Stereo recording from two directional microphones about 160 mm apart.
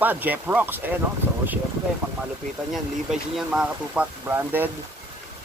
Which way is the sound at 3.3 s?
5° right (ahead or behind).